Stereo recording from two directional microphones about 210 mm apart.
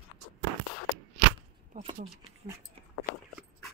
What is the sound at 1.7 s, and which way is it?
Speech, 30° right (ahead or behind).